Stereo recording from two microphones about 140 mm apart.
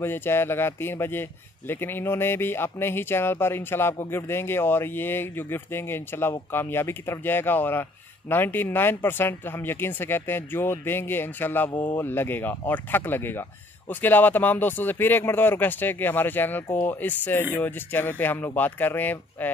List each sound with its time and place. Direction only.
0.0 s speech: 15° left (ahead or behind)
11.7 s speech: 30° left (ahead or behind)
12.0 s speech: 15° left (ahead or behind)